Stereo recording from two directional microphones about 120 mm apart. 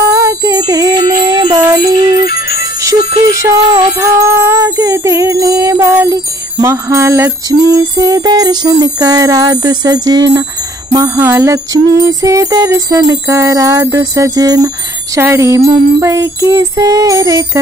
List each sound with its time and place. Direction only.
0.0 s music: 25° right (ahead or behind)